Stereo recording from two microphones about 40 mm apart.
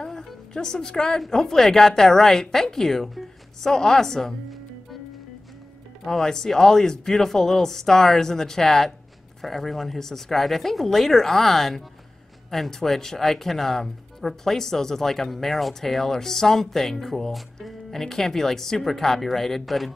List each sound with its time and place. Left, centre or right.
0.0 s music: centre
0.5 s speech: centre
6.0 s speech: centre